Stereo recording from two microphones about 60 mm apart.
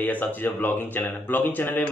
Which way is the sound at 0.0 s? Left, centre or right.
Left.